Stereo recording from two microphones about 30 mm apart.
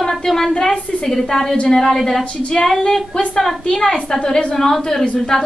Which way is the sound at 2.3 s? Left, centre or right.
Left.